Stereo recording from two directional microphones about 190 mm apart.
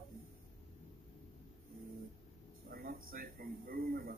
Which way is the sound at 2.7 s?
50° right (ahead or behind).